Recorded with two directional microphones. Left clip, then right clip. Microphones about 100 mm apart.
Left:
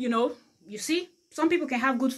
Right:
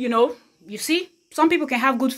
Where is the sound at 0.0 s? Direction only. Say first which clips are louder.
Right 7 dB; 30° right (ahead or behind).